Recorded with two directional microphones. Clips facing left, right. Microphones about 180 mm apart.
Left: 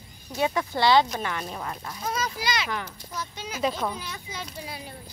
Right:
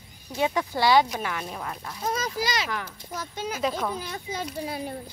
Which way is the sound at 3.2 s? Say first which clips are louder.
Right 1 dB; 50° right (ahead or behind).